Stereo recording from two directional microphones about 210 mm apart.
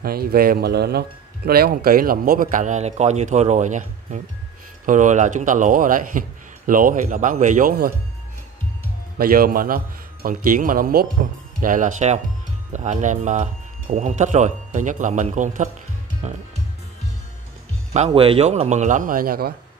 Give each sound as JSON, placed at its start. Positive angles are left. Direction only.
{"t": 0.0, "sound": "a man's voice", "side_deg": -45}
{"t": 9.2, "sound": "a man's voice", "side_deg": -45}
{"t": 17.9, "sound": "a man's voice", "side_deg": -30}